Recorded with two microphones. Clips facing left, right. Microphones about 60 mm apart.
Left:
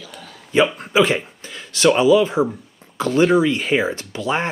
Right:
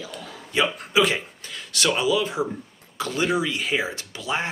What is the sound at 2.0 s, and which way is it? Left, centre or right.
Speech, left.